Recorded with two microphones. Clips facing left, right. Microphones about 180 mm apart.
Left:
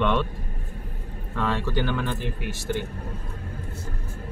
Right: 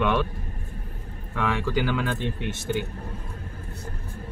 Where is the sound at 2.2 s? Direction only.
25° right (ahead or behind).